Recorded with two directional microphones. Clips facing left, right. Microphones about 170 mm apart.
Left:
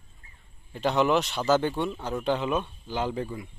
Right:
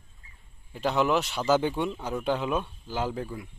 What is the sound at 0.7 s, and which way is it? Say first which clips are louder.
Speech: left 2 dB; 5° right (ahead or behind).